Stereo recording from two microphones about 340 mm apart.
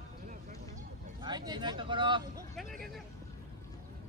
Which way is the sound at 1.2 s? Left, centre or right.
Centre.